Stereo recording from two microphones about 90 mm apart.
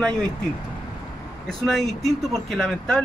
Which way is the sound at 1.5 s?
5° left (ahead or behind).